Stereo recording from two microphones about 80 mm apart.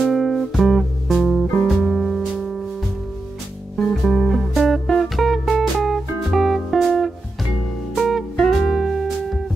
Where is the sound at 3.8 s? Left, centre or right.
Centre.